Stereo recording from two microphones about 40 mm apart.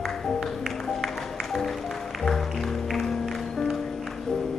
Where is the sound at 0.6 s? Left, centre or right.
Centre.